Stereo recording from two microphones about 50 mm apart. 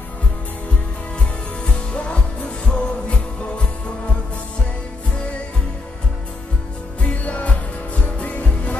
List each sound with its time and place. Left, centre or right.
1.7 s music: centre
7.0 s music: left